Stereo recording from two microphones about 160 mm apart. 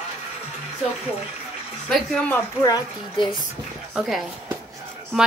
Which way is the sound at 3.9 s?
Centre (ahead or behind).